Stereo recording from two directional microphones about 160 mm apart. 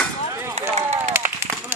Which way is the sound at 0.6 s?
45° right (ahead or behind).